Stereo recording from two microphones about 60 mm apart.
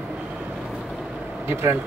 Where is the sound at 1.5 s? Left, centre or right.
Right.